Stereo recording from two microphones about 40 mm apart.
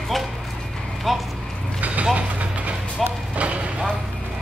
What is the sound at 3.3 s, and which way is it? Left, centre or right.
Clip-clop, right.